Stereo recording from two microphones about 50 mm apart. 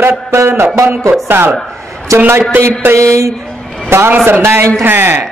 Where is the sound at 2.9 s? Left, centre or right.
Right.